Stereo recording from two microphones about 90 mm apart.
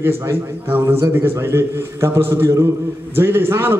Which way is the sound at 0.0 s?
25° right (ahead or behind).